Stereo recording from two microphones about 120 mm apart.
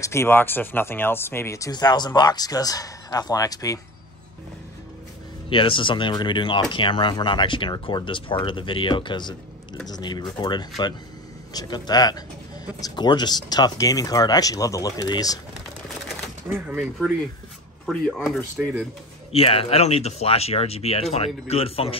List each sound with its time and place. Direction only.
0.0 s speech: 25° left (ahead or behind)
5.5 s speech: 45° left (ahead or behind)
16.4 s speech: 15° right (ahead or behind)
17.8 s speech: centre (ahead or behind)
19.3 s speech: 50° left (ahead or behind)